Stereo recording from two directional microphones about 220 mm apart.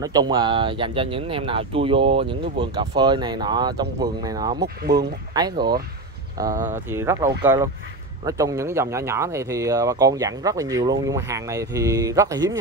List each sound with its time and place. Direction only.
0.0 s speech: 15° right (ahead or behind)
6.5 s speech: 35° right (ahead or behind)
6.9 s speech: 10° right (ahead or behind)